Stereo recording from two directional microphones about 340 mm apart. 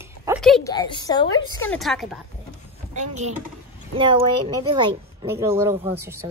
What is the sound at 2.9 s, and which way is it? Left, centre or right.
Speech, centre.